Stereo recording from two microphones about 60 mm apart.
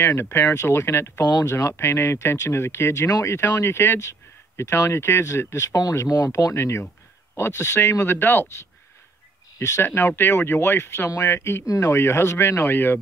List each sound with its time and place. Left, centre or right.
0.0 s speech: left
0.6 s speech: left
1.2 s speech: left
6.5 s speech: left
9.6 s speech: left
9.9 s speech: left
11.1 s speech: left
11.3 s speech: left
11.6 s speech: left
11.9 s speech: left